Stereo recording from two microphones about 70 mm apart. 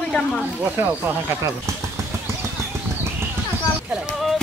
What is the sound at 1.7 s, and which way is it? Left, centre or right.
Speech, right.